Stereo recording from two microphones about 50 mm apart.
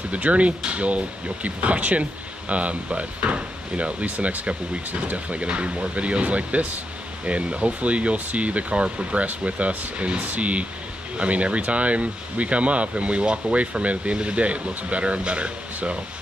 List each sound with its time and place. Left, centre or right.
0.1 s speech: right